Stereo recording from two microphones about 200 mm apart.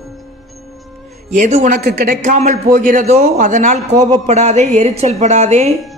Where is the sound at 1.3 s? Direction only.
35° right (ahead or behind).